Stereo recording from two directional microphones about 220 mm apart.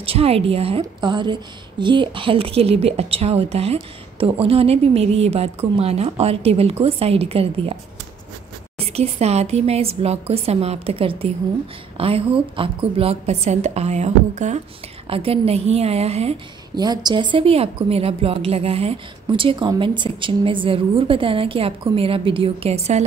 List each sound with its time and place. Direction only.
0.0 s a woman's voice: 25° right (ahead or behind)
8.7 s a woman's voice: 25° right (ahead or behind)